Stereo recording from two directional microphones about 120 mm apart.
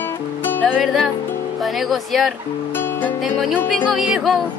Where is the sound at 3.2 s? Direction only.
Centre (ahead or behind).